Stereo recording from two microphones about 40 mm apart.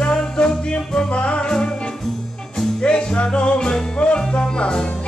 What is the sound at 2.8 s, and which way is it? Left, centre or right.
Music, left.